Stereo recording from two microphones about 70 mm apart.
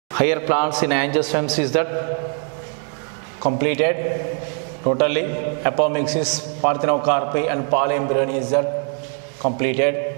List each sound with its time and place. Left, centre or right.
0.2 s a man's voice: centre
3.4 s a man's voice: centre